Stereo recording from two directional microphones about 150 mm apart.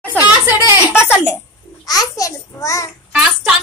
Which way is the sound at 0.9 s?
15° left (ahead or behind).